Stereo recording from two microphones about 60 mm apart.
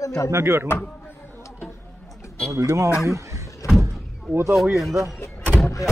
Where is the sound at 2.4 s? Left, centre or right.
Right.